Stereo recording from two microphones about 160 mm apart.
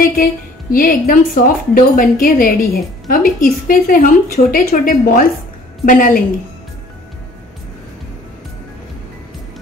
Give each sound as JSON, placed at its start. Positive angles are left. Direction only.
{"t": 0.0, "sound": "a woman's voice", "side_deg": 60}